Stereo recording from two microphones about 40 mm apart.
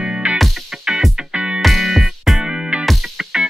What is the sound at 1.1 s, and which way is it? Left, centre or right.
Music, right.